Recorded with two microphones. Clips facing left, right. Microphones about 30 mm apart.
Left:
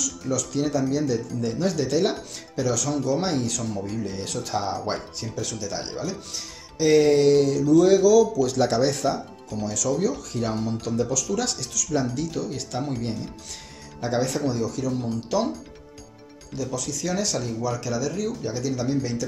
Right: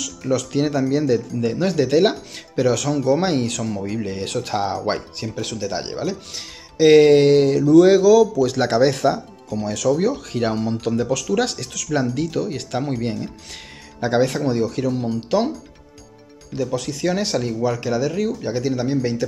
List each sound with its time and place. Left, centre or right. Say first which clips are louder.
0.3 s speech: right 5 dB; right
3.6 s speech: right 4 dB; right
3.9 s speech: right 5 dB; right
8.1 s speech: right 4 dB; right
10.5 s speech: right 5 dB; right
13.9 s speech: right 6 dB; right
14.9 s speech: right 5 dB; right
16.7 s speech: right 5 dB; right